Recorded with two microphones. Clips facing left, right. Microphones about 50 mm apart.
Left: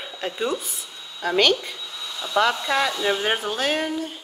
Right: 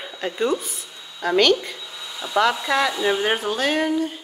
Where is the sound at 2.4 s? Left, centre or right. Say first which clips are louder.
Right 2 dB; centre.